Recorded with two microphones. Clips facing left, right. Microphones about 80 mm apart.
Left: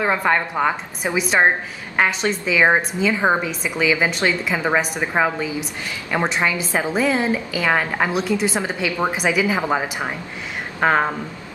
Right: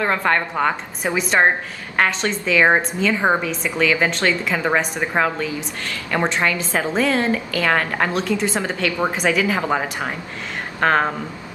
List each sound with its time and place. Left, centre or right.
0.0 s a woman's voice: centre